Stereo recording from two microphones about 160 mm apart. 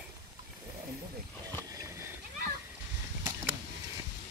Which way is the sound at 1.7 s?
20° right (ahead or behind).